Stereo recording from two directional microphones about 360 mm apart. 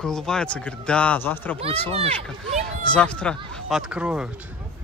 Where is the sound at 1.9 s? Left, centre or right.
Centre.